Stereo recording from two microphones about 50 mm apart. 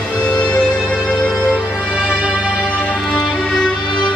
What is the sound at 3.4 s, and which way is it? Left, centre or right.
Music, centre.